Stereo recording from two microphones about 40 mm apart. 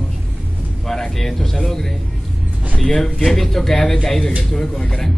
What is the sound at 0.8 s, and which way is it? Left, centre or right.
A man's voice, centre.